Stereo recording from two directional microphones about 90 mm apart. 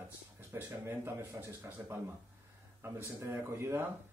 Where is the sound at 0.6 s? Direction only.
20° right (ahead or behind).